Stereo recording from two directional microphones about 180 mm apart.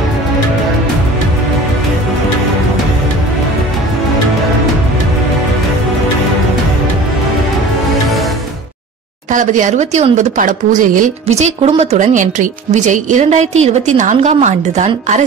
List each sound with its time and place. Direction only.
9.3 s speech: 45° right (ahead or behind)